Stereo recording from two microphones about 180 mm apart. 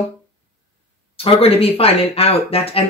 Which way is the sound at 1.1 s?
35° left (ahead or behind).